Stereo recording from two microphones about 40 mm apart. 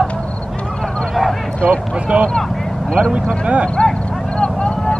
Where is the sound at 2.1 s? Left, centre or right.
Right.